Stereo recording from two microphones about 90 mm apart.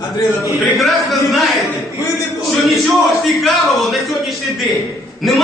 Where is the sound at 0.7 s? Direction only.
Centre (ahead or behind).